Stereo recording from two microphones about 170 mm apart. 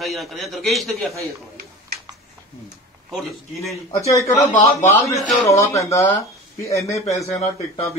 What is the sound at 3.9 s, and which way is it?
Speech, 20° left (ahead or behind).